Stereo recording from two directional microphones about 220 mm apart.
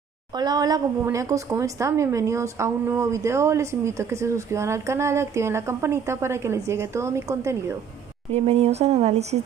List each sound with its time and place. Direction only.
0.4 s a woman's voice: 15° right (ahead or behind)
8.3 s speech: 30° right (ahead or behind)